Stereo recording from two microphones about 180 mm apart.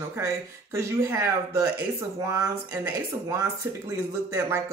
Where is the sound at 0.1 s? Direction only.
15° right (ahead or behind).